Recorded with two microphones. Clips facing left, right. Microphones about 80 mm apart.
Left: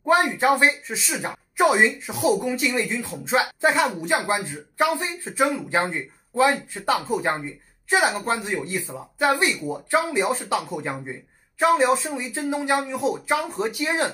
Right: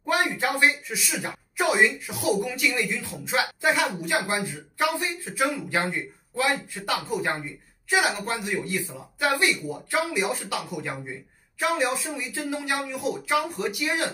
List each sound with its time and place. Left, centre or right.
0.0 s speech: left